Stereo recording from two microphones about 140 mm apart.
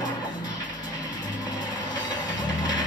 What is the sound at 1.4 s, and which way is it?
Vehicle, 30° left (ahead or behind).